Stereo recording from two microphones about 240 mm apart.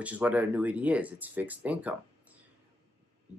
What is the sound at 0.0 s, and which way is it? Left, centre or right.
Speech, centre.